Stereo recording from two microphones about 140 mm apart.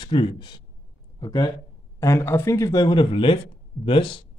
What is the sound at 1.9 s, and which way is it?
Speech, 20° left (ahead or behind).